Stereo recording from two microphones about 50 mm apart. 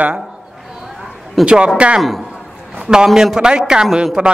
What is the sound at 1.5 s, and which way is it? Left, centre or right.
A man's voice, right.